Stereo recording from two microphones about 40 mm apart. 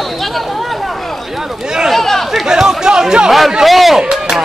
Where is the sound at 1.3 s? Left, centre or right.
Centre.